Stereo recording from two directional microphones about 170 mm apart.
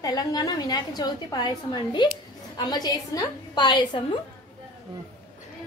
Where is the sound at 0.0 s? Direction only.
20° left (ahead or behind).